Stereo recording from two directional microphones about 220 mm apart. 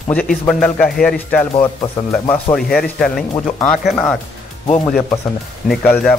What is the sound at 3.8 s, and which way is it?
Speech, 5° left (ahead or behind).